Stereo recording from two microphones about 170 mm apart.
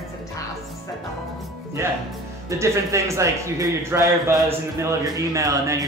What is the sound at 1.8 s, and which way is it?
Speech, 15° right (ahead or behind).